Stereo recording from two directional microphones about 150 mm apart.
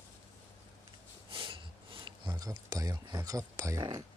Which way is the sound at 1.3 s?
35° right (ahead or behind).